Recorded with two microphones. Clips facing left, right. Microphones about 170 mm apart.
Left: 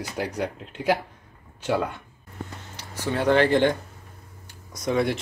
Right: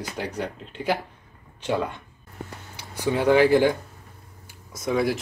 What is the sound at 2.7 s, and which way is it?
Speech, 15° right (ahead or behind).